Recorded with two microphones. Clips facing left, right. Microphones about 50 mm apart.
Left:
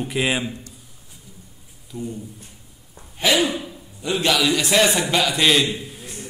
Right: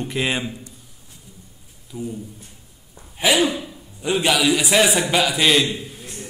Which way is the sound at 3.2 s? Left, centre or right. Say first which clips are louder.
Right 1 dB; centre.